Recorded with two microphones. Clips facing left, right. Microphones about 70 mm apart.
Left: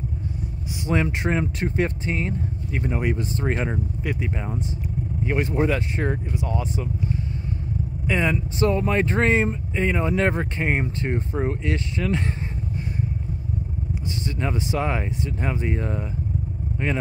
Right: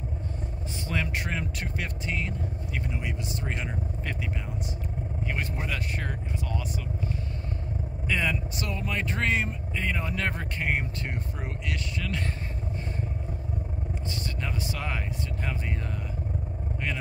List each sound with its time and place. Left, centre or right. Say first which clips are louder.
0.8 s speech: left 8 dB; left
2.9 s speech: left 9 dB; left
5.2 s speech: left 12 dB; left
14.0 s speech: left 8 dB; left